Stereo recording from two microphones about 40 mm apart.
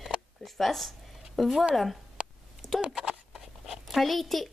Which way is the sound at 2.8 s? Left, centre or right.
Right.